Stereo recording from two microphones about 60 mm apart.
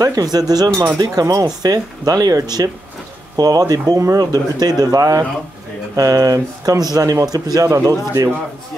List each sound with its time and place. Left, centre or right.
0.0 s speech: right
1.1 s speech: right
5.9 s speech: right
7.8 s speech: right